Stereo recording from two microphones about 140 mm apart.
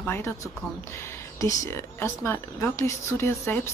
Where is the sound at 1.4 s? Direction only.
25° left (ahead or behind).